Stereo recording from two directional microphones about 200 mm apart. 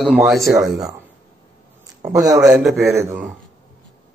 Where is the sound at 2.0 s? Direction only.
15° right (ahead or behind).